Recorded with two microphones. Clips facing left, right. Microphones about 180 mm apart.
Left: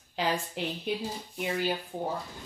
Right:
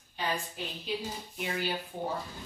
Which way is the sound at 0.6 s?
80° left.